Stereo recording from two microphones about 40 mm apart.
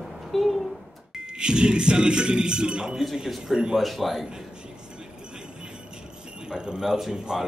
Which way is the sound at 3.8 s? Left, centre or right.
Centre.